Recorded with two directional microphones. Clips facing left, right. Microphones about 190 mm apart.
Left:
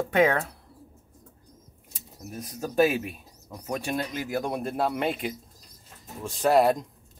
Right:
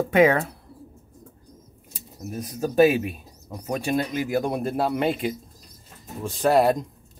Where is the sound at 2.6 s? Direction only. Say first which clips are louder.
Right 5 dB; 10° right (ahead or behind).